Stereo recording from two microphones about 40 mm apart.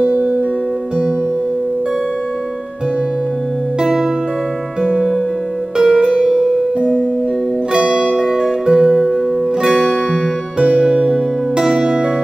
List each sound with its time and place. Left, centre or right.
4.8 s music: centre
6.3 s music: centre
7.7 s music: right
8.3 s music: centre
8.9 s music: centre
10.6 s music: right